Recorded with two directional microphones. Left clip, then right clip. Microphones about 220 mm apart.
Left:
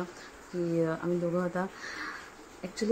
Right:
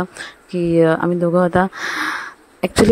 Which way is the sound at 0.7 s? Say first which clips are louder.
Right 17 dB; 40° right (ahead or behind).